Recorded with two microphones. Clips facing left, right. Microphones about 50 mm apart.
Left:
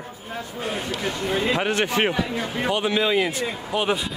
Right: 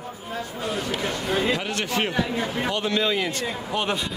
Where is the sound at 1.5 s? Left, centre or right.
Left.